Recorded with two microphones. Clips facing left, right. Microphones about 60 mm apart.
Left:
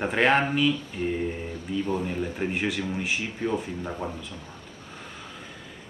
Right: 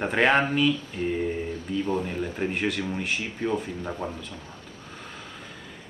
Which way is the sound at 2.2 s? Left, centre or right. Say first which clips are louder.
Even; centre.